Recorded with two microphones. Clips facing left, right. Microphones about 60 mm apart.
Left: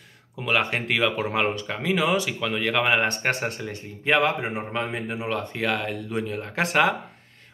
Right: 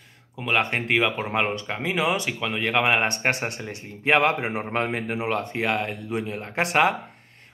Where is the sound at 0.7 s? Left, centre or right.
Centre.